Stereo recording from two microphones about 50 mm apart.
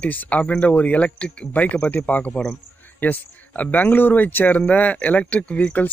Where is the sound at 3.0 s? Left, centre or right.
Left.